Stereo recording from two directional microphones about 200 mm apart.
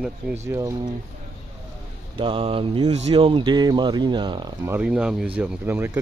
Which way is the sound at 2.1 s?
25° right (ahead or behind).